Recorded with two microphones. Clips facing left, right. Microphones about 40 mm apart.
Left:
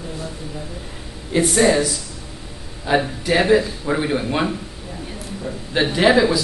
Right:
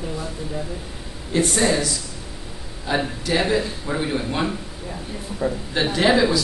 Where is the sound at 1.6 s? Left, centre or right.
Left.